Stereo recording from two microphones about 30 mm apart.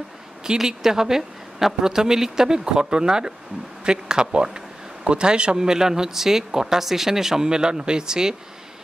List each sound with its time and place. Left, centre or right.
0.7 s a woman's voice: centre
5.6 s speech: centre